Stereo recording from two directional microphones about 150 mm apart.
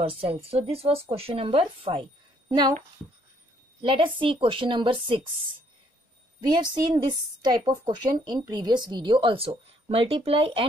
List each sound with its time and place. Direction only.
0.0 s a woman's voice: 40° right (ahead or behind)
3.8 s a woman's voice: 35° right (ahead or behind)
6.5 s a woman's voice: 30° right (ahead or behind)